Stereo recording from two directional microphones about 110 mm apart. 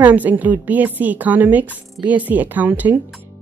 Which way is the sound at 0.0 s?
15° right (ahead or behind).